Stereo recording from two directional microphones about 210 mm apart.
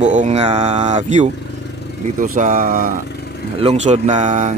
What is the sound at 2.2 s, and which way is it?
Speech, 40° right (ahead or behind).